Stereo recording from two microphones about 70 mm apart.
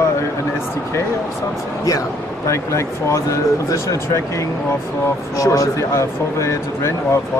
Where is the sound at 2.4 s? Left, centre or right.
Left.